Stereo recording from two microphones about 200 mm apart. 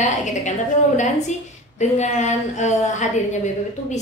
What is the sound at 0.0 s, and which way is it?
Speech, 35° left (ahead or behind).